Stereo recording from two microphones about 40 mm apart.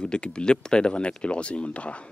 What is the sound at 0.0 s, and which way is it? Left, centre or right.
Speech, left.